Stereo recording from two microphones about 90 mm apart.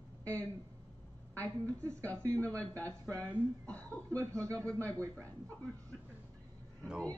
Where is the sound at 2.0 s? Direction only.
15° left (ahead or behind).